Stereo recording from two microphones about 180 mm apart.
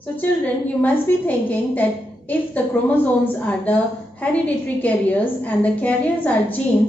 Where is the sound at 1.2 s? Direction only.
10° left (ahead or behind).